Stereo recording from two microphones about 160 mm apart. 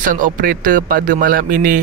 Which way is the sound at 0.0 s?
60° right (ahead or behind).